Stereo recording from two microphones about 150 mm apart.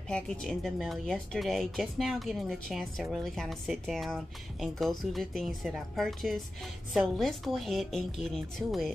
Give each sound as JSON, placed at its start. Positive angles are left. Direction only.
{"t": 0.1, "sound": "speech", "side_deg": 5}